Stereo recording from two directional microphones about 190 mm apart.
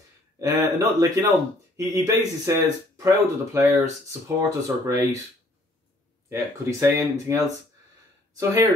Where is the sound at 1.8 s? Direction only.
15° right (ahead or behind).